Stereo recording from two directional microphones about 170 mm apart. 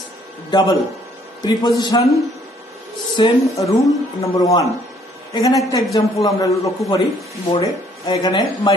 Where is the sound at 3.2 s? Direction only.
20° left (ahead or behind).